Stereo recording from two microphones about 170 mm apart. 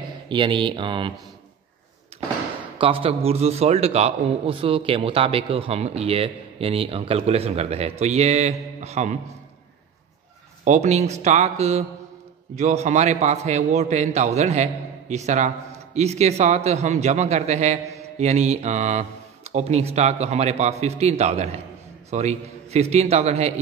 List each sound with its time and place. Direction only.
0.3 s speech: 30° right (ahead or behind)
2.8 s a man's voice: 35° right (ahead or behind)
10.6 s a man's voice: 40° right (ahead or behind)